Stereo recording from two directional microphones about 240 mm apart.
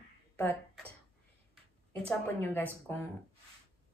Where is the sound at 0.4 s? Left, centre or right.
Centre.